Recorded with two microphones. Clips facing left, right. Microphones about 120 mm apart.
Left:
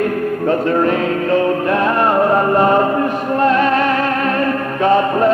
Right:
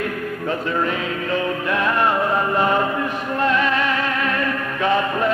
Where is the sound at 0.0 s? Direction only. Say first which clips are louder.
Left 8 dB; 45° left (ahead or behind).